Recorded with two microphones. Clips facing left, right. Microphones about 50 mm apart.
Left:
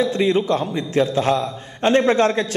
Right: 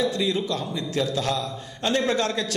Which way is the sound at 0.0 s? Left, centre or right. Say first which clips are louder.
Left 6 dB; left.